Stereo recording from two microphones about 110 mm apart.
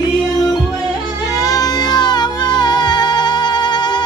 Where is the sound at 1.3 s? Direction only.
35° left (ahead or behind).